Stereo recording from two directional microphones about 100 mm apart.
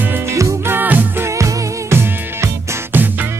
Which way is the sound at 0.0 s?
20° right (ahead or behind).